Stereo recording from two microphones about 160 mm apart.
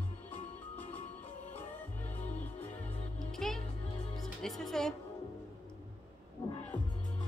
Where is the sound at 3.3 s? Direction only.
Centre (ahead or behind).